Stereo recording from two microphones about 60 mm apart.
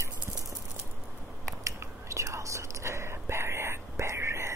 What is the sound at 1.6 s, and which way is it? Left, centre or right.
Whispering, right.